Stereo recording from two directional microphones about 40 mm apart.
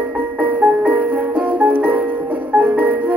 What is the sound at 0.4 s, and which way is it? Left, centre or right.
Music, right.